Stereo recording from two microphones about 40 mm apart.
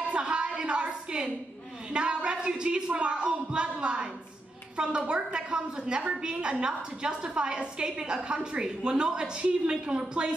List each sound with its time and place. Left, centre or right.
0.1 s a woman's voice: right